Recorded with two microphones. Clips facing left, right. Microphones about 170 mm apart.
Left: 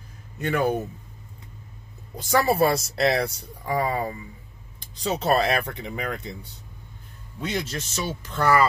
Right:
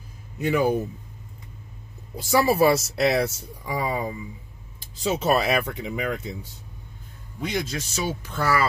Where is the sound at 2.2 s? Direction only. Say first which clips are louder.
Right 1 dB; 5° right (ahead or behind).